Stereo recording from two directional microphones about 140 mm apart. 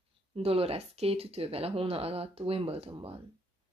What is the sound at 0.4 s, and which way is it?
Speech, 45° right (ahead or behind).